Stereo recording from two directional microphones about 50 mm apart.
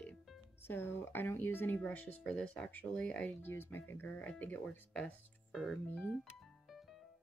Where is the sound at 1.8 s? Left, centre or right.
Left.